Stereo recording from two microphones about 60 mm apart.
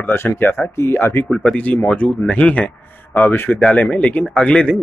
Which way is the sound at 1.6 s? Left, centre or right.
Left.